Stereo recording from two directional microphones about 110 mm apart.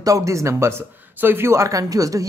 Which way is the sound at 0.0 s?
30° right (ahead or behind).